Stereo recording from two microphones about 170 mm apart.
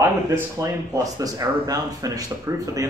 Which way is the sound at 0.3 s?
20° right (ahead or behind).